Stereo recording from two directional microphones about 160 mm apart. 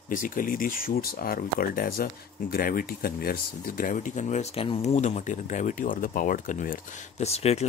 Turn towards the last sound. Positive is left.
turn(degrees=40)  # may be behind; listen again after turning